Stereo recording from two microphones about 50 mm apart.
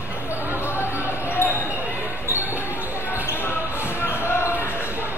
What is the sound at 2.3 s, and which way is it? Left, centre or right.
Basketball bounce, right.